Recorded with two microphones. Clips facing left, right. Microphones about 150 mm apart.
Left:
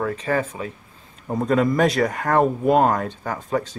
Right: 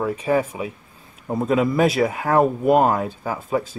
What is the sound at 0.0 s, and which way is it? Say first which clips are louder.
A man's voice: right 2 dB; 10° right (ahead or behind).